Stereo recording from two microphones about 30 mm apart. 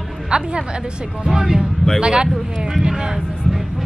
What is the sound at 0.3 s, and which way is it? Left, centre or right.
Speech, right.